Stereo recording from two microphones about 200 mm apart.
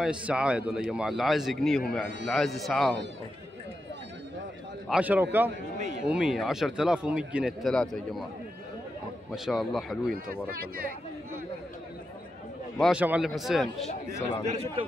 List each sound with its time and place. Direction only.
0.0 s speech: 5° right (ahead or behind)
4.8 s speech: 5° right (ahead or behind)
5.8 s speech: 40° right (ahead or behind)
6.0 s speech: 5° right (ahead or behind)
9.3 s speech: centre (ahead or behind)
12.7 s speech: centre (ahead or behind)
14.4 s a man's voice: 35° right (ahead or behind)